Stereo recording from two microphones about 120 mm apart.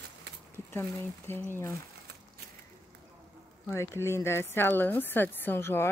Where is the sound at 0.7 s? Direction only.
20° left (ahead or behind).